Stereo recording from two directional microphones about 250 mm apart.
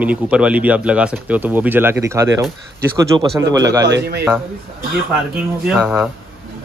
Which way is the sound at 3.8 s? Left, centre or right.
Right.